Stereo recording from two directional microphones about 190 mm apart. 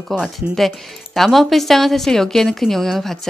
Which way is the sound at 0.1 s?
Centre (ahead or behind).